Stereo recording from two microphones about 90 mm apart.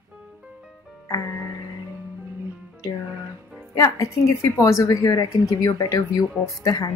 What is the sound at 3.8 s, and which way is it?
Speech, 40° left (ahead or behind).